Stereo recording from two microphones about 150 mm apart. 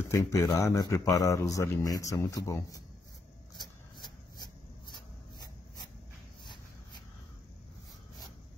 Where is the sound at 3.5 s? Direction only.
30° left (ahead or behind).